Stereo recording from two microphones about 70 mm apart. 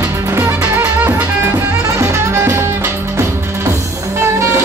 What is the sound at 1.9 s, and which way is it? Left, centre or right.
Music, right.